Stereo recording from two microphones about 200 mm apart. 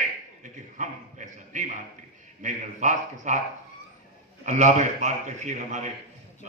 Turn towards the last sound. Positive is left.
turn(degrees=-35)  # may be behind; listen again after turning